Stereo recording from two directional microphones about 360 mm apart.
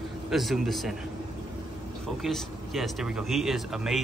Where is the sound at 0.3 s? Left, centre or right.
Centre.